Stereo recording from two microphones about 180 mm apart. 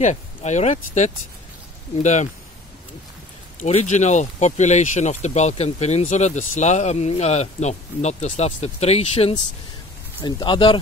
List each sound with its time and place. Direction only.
0.0 s speech: 40° left (ahead or behind)
3.5 s speech: 40° left (ahead or behind)